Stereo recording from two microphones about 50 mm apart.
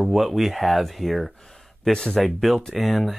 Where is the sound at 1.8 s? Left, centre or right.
Centre.